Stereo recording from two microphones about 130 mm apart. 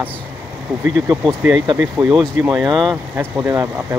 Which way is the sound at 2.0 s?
10° right (ahead or behind).